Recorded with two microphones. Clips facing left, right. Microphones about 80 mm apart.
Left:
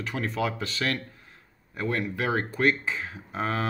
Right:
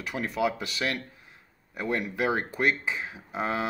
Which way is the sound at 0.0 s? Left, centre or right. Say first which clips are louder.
Right 1 dB; centre.